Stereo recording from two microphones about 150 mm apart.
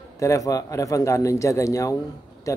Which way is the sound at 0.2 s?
20° left (ahead or behind).